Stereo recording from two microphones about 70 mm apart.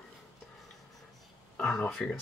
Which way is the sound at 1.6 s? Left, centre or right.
Centre.